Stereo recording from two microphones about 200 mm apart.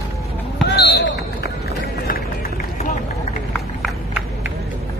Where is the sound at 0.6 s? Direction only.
55° left (ahead or behind).